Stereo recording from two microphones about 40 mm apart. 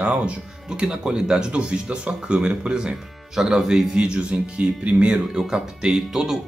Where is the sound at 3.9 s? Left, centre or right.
Right.